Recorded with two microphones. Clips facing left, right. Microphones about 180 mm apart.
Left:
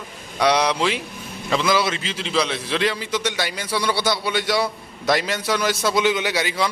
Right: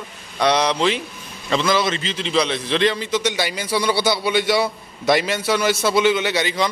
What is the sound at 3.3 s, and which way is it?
A man's voice, 5° right (ahead or behind).